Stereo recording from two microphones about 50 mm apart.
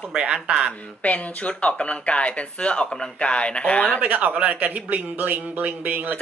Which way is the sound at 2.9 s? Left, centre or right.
Centre.